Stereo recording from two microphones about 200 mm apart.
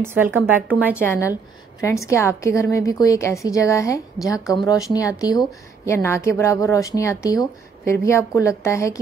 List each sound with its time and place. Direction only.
0.0 s speech: 10° right (ahead or behind)
1.8 s a woman's voice: 15° left (ahead or behind)